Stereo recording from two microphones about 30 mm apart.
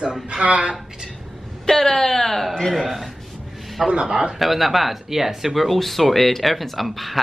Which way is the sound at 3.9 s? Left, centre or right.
Right.